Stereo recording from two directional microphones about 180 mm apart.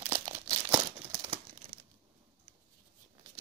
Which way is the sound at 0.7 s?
20° right (ahead or behind).